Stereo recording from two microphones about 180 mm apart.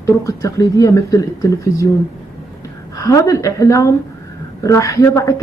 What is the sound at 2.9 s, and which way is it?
A woman's voice, 20° left (ahead or behind).